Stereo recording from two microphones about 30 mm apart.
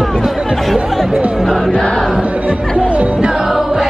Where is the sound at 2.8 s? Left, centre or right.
Right.